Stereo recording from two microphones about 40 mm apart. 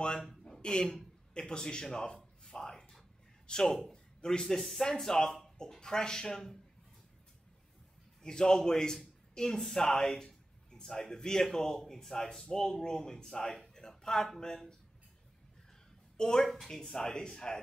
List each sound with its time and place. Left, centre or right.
0.0 s speech: centre
1.3 s a sound: left
3.4 s speech: centre
8.2 s a man's voice: centre
16.2 s speech: centre